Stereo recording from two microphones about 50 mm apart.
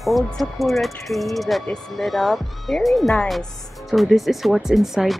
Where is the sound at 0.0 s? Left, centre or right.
Centre.